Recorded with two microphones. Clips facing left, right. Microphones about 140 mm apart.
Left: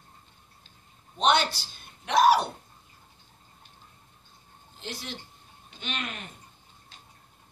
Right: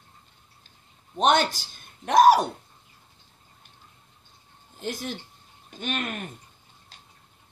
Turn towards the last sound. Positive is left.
turn(degrees=-50)  # may be behind; listen again after turning